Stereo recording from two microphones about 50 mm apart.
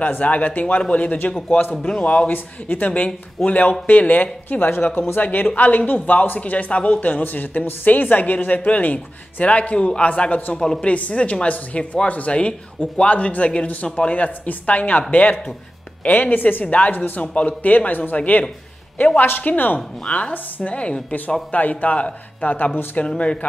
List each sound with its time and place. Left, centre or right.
0.0 s speech: left
1.8 s speech: centre
2.2 s speech: left
16.6 s speech: left